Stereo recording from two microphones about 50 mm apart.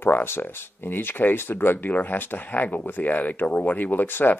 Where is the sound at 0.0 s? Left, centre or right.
Left.